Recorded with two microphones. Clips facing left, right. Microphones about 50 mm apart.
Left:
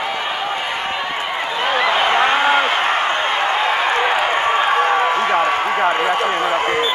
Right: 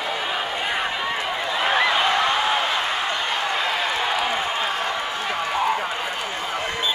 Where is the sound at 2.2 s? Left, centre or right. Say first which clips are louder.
Left 6 dB; left.